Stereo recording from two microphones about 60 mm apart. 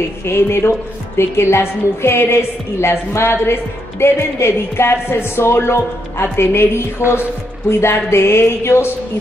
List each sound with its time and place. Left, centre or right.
0.2 s a woman's voice: left